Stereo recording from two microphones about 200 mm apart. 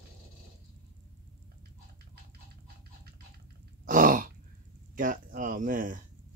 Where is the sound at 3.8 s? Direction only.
40° right (ahead or behind).